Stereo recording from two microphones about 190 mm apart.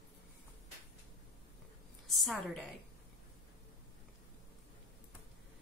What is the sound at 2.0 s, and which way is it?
Speech, centre (ahead or behind).